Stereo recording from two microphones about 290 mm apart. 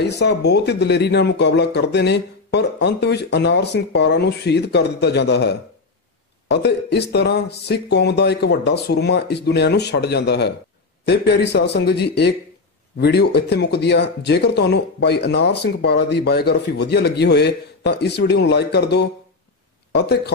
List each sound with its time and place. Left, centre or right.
0.0 s speech: left